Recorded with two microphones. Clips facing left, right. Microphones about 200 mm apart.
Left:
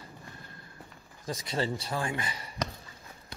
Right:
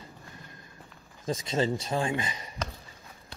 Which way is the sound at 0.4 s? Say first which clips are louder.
Even; 15° right (ahead or behind).